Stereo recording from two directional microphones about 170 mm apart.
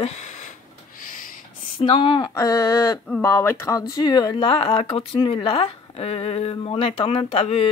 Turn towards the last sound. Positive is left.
turn(degrees=35)  # may be behind; listen again after turning